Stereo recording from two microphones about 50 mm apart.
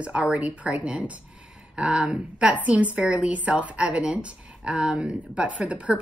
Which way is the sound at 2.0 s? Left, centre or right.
Right.